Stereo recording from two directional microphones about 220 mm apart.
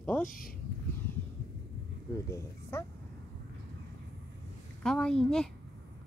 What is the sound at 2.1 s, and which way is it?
Speech, 15° left (ahead or behind).